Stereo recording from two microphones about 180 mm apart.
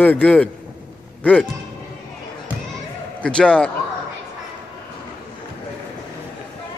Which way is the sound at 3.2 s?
5° left (ahead or behind).